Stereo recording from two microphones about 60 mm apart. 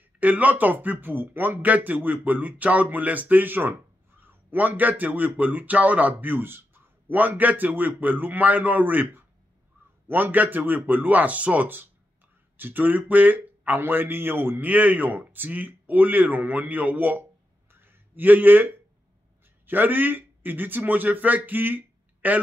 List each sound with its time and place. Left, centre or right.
0.2 s a man's voice: right